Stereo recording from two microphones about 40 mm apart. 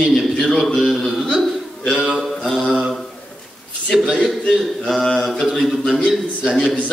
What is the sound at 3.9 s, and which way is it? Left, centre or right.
Speech, centre.